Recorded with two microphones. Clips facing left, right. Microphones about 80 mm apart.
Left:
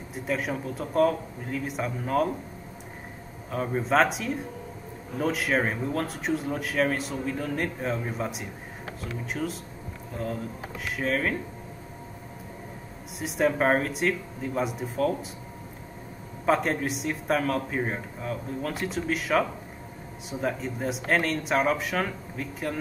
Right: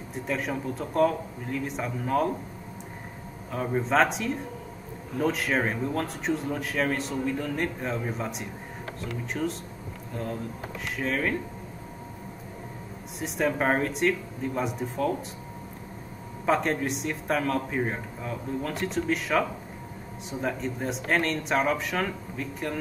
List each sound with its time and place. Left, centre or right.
0.1 s speech: centre
3.5 s speech: centre
11.0 s speech: centre
13.2 s speech: centre
16.4 s speech: centre